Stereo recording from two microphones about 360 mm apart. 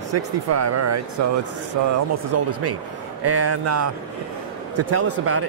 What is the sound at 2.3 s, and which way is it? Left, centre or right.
Speech, right.